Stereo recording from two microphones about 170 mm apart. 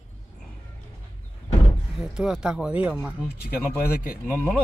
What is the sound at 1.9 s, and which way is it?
Speech, centre (ahead or behind).